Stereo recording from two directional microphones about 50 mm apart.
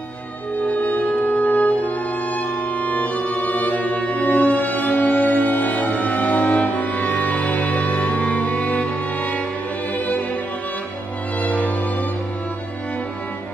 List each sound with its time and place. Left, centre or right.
0.7 s music: left
11.4 s music: left